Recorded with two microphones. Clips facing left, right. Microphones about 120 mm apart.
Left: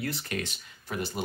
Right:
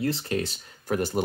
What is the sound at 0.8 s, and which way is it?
Speech, 50° right (ahead or behind).